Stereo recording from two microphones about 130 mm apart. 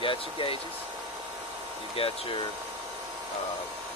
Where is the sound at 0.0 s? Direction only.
45° left (ahead or behind).